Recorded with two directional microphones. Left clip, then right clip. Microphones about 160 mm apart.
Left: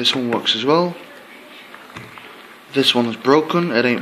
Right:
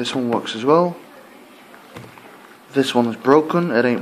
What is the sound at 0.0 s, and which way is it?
Speech, 10° right (ahead or behind).